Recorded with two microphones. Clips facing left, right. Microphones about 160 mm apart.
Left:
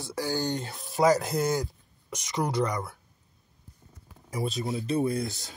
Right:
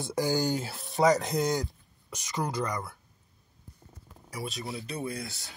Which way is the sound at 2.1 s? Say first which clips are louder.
Left 4 dB; 20° left (ahead or behind).